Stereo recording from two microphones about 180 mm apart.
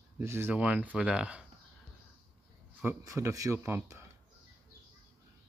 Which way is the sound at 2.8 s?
15° right (ahead or behind).